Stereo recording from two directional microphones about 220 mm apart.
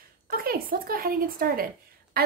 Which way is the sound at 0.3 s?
40° right (ahead or behind).